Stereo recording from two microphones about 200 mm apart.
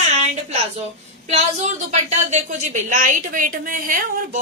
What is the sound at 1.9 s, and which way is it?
A woman's voice, 35° right (ahead or behind).